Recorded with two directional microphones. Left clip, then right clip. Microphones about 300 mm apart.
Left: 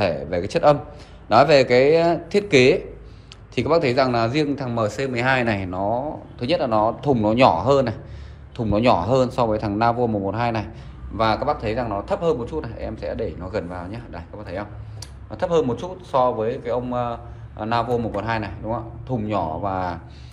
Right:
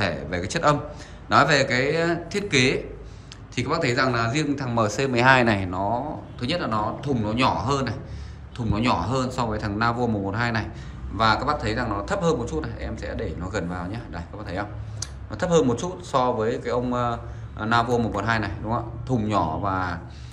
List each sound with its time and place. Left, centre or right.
0.0 s a man's voice: centre